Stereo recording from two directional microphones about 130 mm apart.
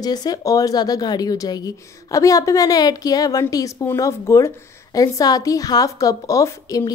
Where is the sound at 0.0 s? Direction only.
30° left (ahead or behind).